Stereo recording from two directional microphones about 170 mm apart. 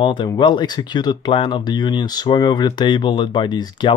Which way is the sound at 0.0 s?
30° left (ahead or behind).